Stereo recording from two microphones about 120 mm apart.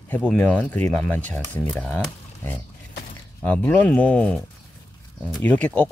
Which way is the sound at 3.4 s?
10° left (ahead or behind).